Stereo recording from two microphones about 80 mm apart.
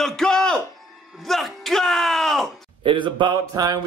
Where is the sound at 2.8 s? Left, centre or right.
Right.